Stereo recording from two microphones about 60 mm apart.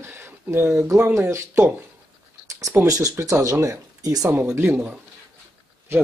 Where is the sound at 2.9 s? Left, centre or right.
Right.